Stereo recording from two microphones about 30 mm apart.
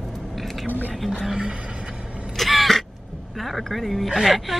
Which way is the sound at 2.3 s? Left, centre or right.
Centre.